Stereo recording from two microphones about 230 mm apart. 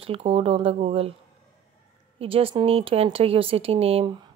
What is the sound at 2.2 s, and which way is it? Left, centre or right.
Speech, right.